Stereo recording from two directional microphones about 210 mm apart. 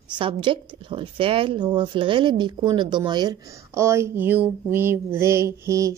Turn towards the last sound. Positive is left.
turn(degrees=-15)  # may be behind; listen again after turning